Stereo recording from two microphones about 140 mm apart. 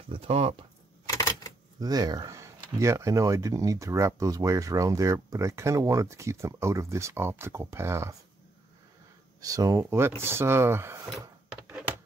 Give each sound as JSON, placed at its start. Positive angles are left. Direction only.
{"t": 0.1, "sound": "speech", "side_deg": -45}
{"t": 1.1, "sound": "typewriter", "side_deg": 25}
{"t": 1.8, "sound": "speech", "side_deg": -30}
{"t": 9.4, "sound": "speech", "side_deg": -25}